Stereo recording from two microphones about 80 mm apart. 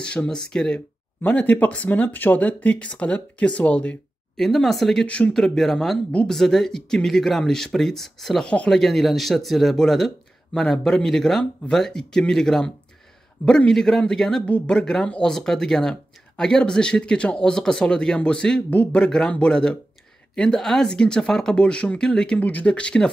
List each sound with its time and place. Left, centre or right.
0.0 s speech: centre
0.7 s speech: centre
4.5 s speech: centre
5.0 s speech: centre
5.3 s speech: centre